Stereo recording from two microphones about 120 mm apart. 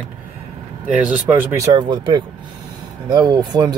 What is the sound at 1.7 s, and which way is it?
Speech, 40° right (ahead or behind).